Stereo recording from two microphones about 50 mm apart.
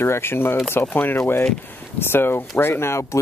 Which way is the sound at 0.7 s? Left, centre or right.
Left.